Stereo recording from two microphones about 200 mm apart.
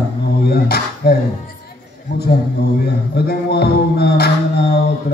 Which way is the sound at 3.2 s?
50° left (ahead or behind).